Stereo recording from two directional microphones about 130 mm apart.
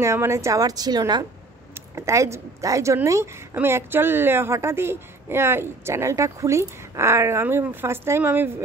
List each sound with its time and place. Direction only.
0.0 s a woman's voice: 20° right (ahead or behind)